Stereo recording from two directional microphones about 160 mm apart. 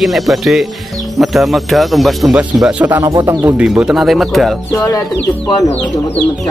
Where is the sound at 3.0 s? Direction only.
20° right (ahead or behind).